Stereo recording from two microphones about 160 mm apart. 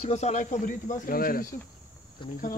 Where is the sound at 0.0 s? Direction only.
45° left (ahead or behind).